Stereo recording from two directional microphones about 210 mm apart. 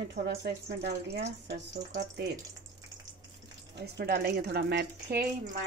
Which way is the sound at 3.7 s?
50° right (ahead or behind).